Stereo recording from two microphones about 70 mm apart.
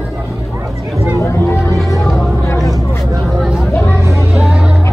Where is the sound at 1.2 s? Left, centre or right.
Left.